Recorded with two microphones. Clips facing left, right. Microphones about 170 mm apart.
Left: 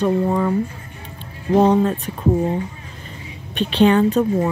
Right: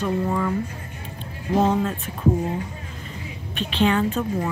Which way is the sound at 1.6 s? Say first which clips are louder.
Left 6 dB; 35° left (ahead or behind).